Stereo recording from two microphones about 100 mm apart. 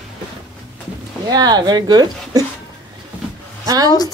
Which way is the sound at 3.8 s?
40° left (ahead or behind).